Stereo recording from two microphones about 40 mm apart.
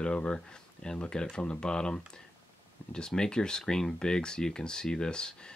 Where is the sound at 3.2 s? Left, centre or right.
Centre.